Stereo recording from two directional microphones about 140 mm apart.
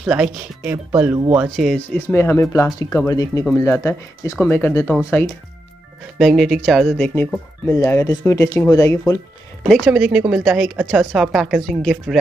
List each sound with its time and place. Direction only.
0.0 s speech: 10° right (ahead or behind)
2.0 s speech: 20° left (ahead or behind)
6.1 s speech: centre (ahead or behind)
7.0 s speech: 15° left (ahead or behind)
9.6 s speech: 5° right (ahead or behind)